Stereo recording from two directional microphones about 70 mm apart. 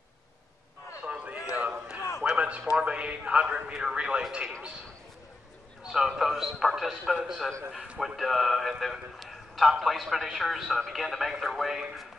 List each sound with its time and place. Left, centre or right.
1.0 s a sound: centre
2.8 s a man's voice: centre
5.9 s a man's voice: centre